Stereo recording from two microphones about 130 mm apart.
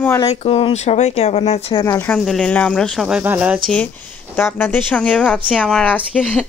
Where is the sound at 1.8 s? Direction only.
20° left (ahead or behind).